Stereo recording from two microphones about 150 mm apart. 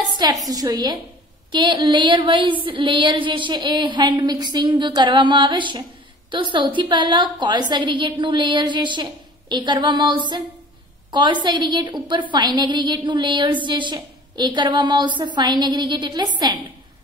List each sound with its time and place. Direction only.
0.5 s a woman's voice: 25° right (ahead or behind)